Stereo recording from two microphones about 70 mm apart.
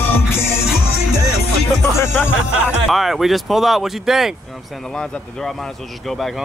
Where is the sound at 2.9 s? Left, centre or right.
Centre.